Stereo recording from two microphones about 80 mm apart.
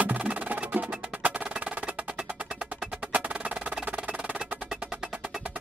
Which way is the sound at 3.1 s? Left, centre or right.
Centre.